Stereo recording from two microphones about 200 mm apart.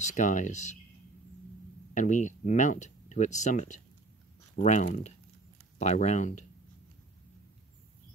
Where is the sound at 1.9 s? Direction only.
40° left (ahead or behind).